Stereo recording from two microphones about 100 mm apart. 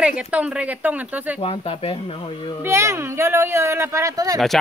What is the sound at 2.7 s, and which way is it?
Speech, 25° right (ahead or behind).